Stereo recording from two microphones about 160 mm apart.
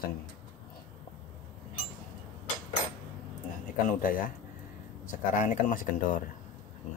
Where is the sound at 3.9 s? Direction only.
60° left (ahead or behind).